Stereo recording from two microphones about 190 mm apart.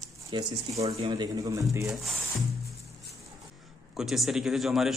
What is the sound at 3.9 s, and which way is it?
A man's voice, centre (ahead or behind).